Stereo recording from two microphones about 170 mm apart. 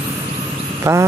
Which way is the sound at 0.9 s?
15° right (ahead or behind).